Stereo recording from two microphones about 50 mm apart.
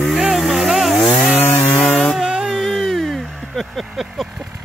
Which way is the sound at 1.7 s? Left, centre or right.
Left.